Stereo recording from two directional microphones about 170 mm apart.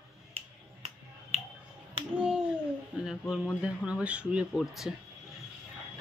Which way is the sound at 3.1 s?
5° right (ahead or behind).